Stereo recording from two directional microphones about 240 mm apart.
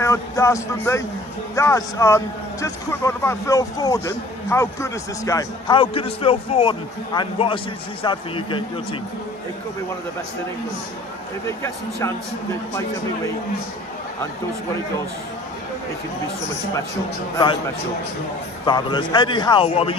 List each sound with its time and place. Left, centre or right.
0.0 s a man's voice: centre
11.4 s a man's voice: centre
18.7 s speech: centre